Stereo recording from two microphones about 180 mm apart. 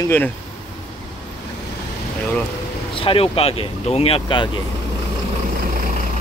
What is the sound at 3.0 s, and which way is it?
Speech, 30° left (ahead or behind).